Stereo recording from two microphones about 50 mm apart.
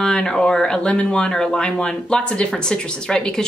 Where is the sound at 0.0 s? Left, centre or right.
Centre.